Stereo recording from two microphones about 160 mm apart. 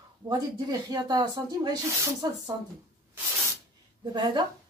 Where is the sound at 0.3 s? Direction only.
25° right (ahead or behind).